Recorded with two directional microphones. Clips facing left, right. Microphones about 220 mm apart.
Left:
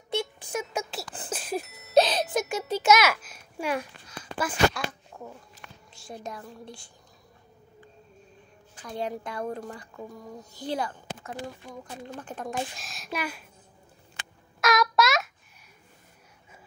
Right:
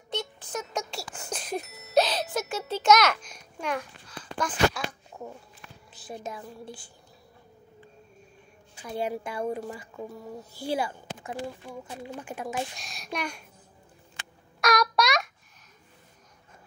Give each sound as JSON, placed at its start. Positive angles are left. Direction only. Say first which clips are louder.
{"t": 0.1, "sound": "a sound", "louder": "left 3 dB", "side_deg": 10}
{"t": 2.0, "sound": "music", "louder": "left 3 dB", "side_deg": 20}
{"t": 2.3, "sound": "a sound", "louder": "left 3 dB", "side_deg": 15}
{"t": 4.4, "sound": "speech", "louder": "left 1 dB", "side_deg": 5}
{"t": 5.1, "sound": "walk", "louder": "right 2 dB", "side_deg": -10}
{"t": 5.9, "sound": "speech", "louder": "right 1 dB", "side_deg": 0}
{"t": 8.7, "sound": "speech", "louder": "right 2 dB", "side_deg": -5}
{"t": 12.7, "sound": "a child's voice", "louder": "even", "side_deg": 0}
{"t": 14.6, "sound": "a sound", "louder": "left 1 dB", "side_deg": 0}